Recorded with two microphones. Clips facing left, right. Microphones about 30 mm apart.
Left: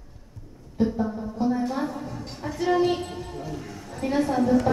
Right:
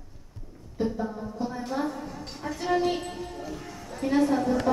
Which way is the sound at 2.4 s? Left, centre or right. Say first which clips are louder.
Left 3 dB; centre.